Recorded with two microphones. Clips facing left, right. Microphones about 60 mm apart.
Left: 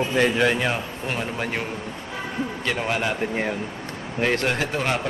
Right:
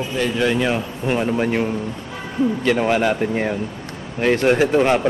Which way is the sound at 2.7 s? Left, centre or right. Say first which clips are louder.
Right 6 dB; centre.